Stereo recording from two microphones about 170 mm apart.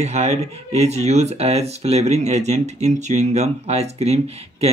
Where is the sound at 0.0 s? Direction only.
40° right (ahead or behind).